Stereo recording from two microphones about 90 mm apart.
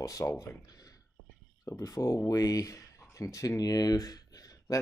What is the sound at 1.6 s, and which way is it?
Speech, 35° left (ahead or behind).